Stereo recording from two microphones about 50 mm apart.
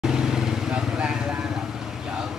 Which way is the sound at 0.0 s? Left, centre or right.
Centre.